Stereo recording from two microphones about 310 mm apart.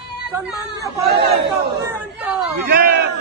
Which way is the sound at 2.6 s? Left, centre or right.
Right.